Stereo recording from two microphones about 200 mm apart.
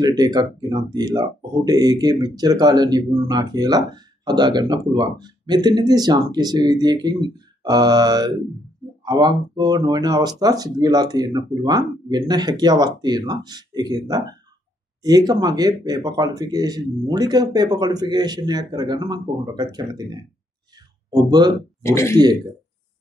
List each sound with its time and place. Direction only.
0.0 s speech: 20° right (ahead or behind)
21.1 s speech: 20° right (ahead or behind)
21.8 s speech: 15° left (ahead or behind)